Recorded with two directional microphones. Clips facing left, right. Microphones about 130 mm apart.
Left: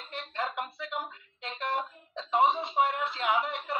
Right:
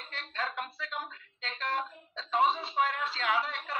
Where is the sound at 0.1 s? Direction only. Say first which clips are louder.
Left 3 dB; 20° left (ahead or behind).